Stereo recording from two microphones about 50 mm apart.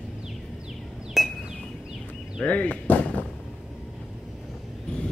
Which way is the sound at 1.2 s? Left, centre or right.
Centre.